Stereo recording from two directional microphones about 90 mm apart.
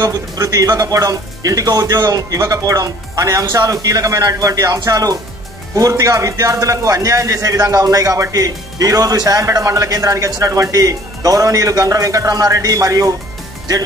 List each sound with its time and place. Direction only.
0.0 s speech: 40° right (ahead or behind)